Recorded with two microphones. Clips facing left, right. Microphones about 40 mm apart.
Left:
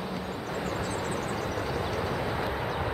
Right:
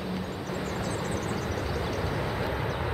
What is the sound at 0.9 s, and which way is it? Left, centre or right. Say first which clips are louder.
Vehicle: even; left.